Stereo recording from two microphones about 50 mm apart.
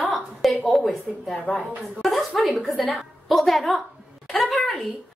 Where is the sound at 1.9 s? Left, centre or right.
Centre.